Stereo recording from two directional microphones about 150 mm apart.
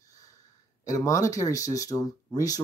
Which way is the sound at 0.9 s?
20° left (ahead or behind).